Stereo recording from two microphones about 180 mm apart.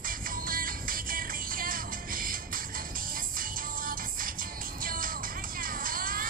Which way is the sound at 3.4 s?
50° right (ahead or behind).